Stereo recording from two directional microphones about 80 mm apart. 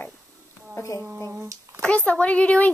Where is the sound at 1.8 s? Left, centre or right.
Centre.